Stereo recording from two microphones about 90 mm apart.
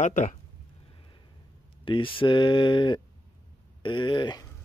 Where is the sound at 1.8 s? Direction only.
70° left (ahead or behind).